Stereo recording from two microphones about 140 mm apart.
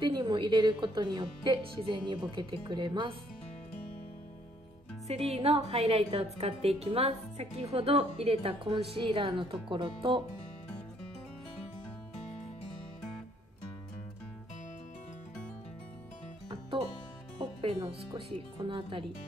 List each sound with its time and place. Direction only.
0.0 s speech: 35° right (ahead or behind)
5.0 s a woman's voice: 45° right (ahead or behind)
17.4 s speech: 45° right (ahead or behind)